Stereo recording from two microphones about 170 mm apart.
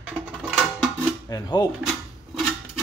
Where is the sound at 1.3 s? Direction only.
25° left (ahead or behind).